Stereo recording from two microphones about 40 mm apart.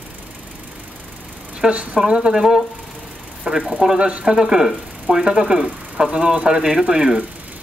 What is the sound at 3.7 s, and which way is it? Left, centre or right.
Speech, centre.